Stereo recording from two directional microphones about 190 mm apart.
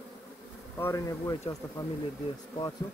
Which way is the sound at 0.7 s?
15° left (ahead or behind).